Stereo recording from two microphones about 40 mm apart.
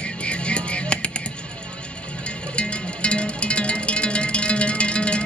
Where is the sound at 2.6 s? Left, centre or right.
Left.